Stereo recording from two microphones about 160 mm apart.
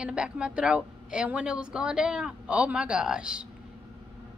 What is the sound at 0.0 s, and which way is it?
Speech, 5° right (ahead or behind).